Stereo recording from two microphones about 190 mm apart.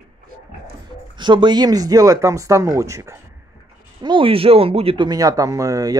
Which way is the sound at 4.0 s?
25° right (ahead or behind).